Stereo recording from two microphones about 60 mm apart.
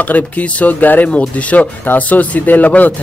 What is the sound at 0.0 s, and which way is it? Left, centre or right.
Speech, left.